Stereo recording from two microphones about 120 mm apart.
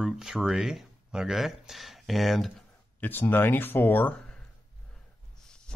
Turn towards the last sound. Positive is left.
turn(degrees=15)  # may be behind; listen again after turning